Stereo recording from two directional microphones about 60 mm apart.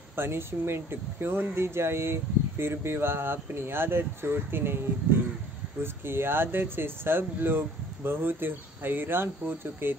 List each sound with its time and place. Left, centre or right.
0.1 s speech: right
5.8 s speech: right